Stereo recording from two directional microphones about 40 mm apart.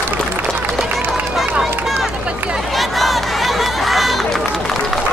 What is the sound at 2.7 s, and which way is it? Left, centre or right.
Crowd, centre.